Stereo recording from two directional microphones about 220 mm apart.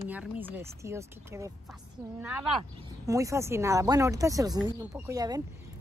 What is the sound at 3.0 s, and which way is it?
Speech, 15° right (ahead or behind).